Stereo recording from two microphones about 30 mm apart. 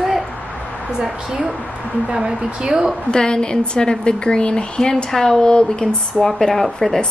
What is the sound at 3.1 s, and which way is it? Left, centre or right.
A woman's voice, left.